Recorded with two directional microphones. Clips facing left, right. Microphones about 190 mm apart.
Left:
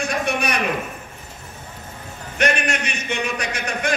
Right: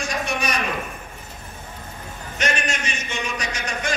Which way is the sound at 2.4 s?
60° left (ahead or behind).